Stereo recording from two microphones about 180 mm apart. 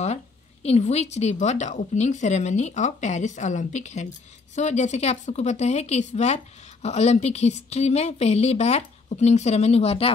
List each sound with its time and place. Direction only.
0.0 s speech: 35° left (ahead or behind)